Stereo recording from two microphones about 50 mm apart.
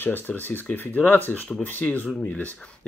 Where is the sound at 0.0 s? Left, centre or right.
Left.